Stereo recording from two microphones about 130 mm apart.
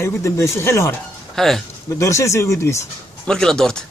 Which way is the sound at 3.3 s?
5° left (ahead or behind).